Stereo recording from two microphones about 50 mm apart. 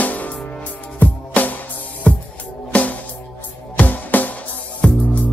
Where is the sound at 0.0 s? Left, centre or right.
Left.